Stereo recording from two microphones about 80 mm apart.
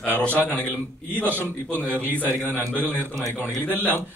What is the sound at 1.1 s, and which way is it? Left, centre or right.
Speech, right.